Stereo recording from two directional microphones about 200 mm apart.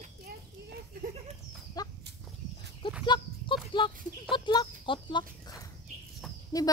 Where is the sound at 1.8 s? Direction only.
20° left (ahead or behind).